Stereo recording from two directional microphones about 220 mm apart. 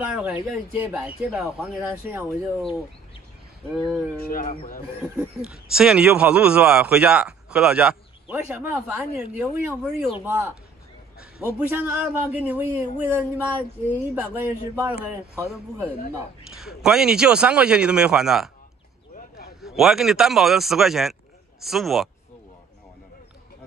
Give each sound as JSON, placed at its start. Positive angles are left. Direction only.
{"t": 0.0, "sound": "a man's voice", "side_deg": -5}
{"t": 4.2, "sound": "speech", "side_deg": 40}
{"t": 5.0, "sound": "a man's voice", "side_deg": -5}
{"t": 11.1, "sound": "a man's voice", "side_deg": -5}
{"t": 19.1, "sound": "a sound", "side_deg": 45}
{"t": 19.6, "sound": "speech", "side_deg": 0}